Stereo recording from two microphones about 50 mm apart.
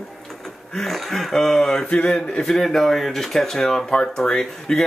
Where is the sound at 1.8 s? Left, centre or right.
Left.